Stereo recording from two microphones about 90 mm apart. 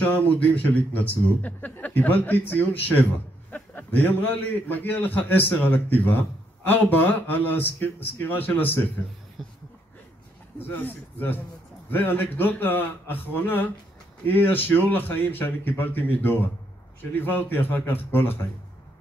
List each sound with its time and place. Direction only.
0.0 s a man's voice: 20° left (ahead or behind)
9.4 s a sound: centre (ahead or behind)
10.7 s a man's voice: 20° left (ahead or behind)